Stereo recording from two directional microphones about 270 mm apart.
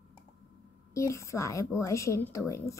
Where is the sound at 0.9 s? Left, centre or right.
Centre.